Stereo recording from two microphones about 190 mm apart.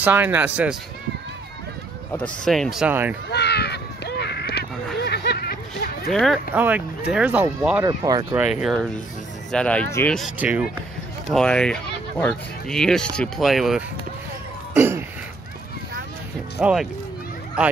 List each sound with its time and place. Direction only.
0.0 s speech: 10° right (ahead or behind)
2.1 s speech: 5° left (ahead or behind)
3.3 s crow: 60° left (ahead or behind)
5.0 s a sound: 60° left (ahead or behind)
6.0 s speech: centre (ahead or behind); by 8.4 s 20° right (ahead or behind)
8.4 s speech: 5° right (ahead or behind)
10.1 s speech: 5° right (ahead or behind)
14.8 s throat clearing: 10° right (ahead or behind)
16.6 s speech: 5° right (ahead or behind)